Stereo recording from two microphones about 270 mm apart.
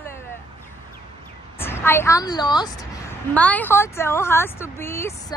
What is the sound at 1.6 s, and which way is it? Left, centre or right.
A woman's voice, centre.